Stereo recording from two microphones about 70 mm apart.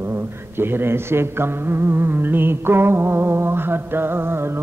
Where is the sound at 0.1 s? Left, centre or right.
Right.